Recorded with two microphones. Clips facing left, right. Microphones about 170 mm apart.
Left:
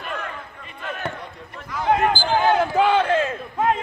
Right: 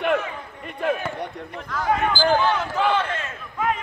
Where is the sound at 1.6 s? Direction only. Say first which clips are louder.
Left 2 dB; 15° left (ahead or behind).